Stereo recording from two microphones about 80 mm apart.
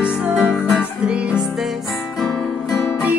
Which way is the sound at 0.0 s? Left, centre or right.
Centre.